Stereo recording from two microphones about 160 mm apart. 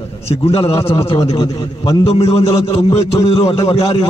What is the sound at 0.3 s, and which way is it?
Speech, 35° left (ahead or behind).